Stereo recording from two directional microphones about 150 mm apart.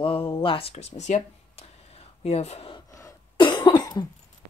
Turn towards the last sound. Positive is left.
turn(degrees=25)  # may be behind; listen again after turning